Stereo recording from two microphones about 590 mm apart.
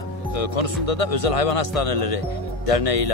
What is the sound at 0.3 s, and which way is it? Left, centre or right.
Speech, left.